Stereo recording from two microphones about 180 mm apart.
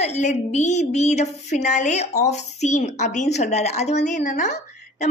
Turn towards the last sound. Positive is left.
turn(degrees=40)  # may be behind; listen again after turning